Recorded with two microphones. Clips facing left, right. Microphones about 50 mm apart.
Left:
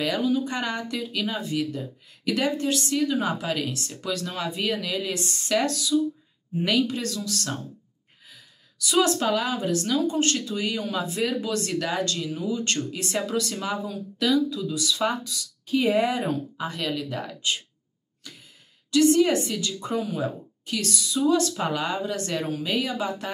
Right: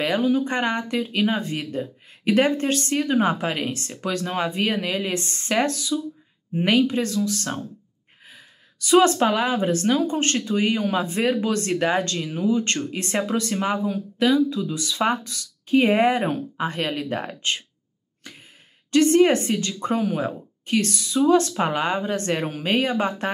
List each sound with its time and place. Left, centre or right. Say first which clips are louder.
0.3 s speech: right 4 dB; right
18.3 s gasp: right 3 dB; right
18.9 s speech: right 3 dB; right